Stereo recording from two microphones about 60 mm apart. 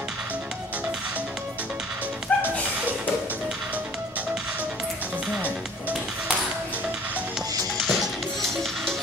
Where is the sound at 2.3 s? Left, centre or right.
Left.